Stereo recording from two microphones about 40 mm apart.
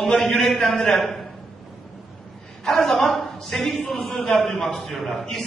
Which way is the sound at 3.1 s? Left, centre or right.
Centre.